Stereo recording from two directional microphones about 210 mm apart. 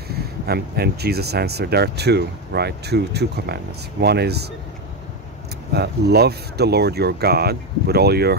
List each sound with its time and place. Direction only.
0.1 s speech: 50° right (ahead or behind)
5.7 s speech: 50° right (ahead or behind)